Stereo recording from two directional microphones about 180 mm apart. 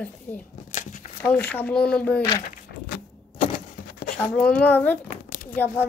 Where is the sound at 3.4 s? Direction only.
60° left (ahead or behind).